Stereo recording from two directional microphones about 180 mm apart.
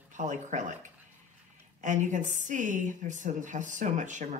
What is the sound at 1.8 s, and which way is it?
Speech, 45° right (ahead or behind).